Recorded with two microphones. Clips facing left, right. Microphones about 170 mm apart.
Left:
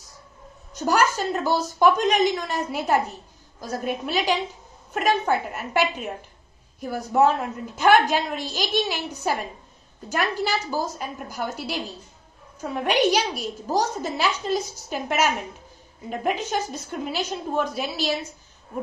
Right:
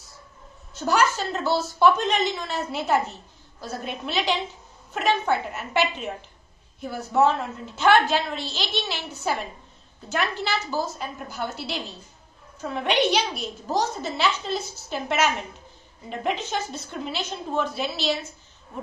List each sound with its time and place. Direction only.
0.7 s a woman's voice: 10° left (ahead or behind)